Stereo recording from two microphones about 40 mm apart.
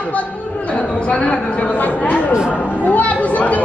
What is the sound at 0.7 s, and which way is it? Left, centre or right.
A woman's voice, left.